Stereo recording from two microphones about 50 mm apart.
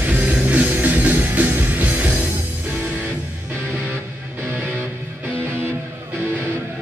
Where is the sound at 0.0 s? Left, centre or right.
Right.